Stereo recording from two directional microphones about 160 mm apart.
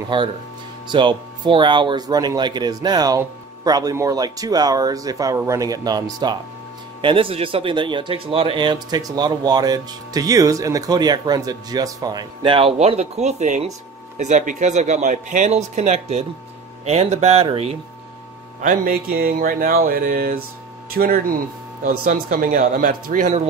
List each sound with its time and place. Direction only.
0.1 s speech: 30° right (ahead or behind)
18.6 s speech: 60° right (ahead or behind)